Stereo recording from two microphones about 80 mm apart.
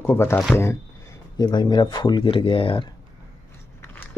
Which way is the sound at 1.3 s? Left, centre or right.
Left.